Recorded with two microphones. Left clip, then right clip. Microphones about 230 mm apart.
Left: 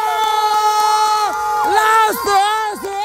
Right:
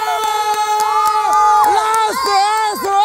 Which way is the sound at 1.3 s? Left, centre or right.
Right.